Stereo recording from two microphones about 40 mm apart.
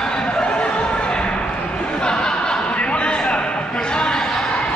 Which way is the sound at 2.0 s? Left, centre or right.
Left.